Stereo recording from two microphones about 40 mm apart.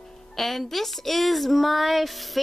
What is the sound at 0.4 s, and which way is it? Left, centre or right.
Speech, centre.